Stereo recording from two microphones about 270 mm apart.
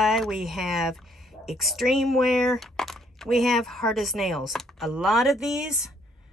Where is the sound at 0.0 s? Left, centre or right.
Centre.